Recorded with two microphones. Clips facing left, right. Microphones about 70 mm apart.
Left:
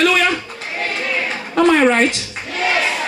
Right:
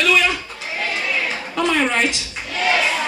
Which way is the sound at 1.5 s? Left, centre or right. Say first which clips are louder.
Left 7 dB; left.